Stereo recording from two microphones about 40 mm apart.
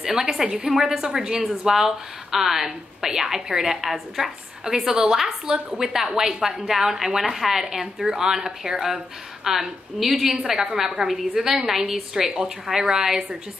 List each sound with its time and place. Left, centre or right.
0.0 s a woman's voice: centre